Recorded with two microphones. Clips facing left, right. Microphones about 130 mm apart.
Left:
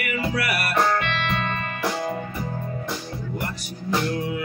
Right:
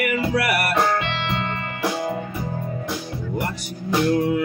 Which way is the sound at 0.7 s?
25° right (ahead or behind).